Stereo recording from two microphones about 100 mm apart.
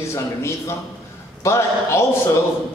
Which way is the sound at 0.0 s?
30° left (ahead or behind).